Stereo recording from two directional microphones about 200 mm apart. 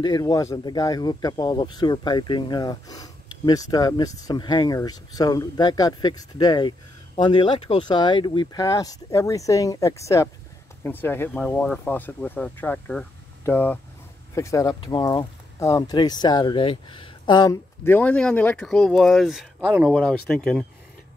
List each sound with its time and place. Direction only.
0.0 s speech: 20° left (ahead or behind)
17.8 s speech: 5° left (ahead or behind)
19.9 s speech: 5° left (ahead or behind)